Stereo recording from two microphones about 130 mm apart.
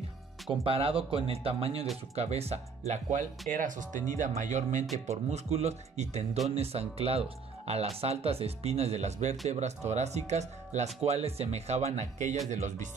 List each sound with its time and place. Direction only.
0.5 s speech: 45° right (ahead or behind)
2.9 s speech: 70° right (ahead or behind)
4.4 s speech: 70° right (ahead or behind)
5.1 s speech: 55° right (ahead or behind)